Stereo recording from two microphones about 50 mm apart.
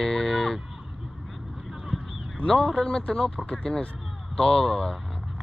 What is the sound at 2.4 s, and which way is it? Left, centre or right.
Speech, centre.